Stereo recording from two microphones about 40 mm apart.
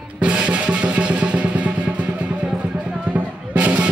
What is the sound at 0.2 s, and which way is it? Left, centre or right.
Music, right.